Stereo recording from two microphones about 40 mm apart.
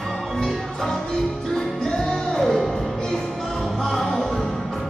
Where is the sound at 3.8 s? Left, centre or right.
Centre.